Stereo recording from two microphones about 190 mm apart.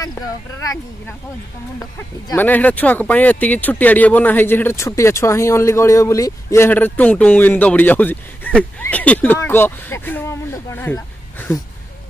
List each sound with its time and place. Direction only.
0.0 s speech: 20° left (ahead or behind)